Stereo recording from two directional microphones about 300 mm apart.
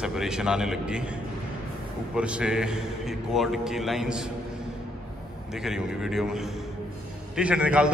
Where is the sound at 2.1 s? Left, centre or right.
Centre.